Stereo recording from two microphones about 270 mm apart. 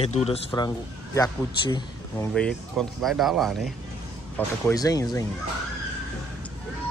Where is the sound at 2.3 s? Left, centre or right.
Centre.